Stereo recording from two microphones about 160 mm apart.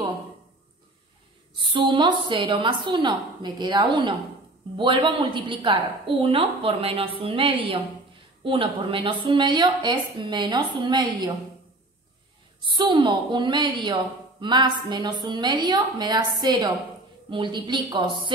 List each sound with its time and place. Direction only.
1.6 s a woman's voice: 30° right (ahead or behind)
12.6 s a woman's voice: 30° right (ahead or behind)